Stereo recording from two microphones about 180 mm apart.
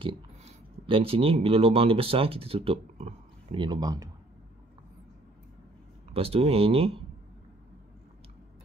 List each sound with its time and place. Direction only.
0.0 s speech: 30° right (ahead or behind)
3.5 s speech: 25° right (ahead or behind)
6.1 s speech: 35° right (ahead or behind)